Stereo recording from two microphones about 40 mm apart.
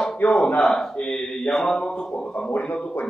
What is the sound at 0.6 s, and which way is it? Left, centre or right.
A man's voice, centre.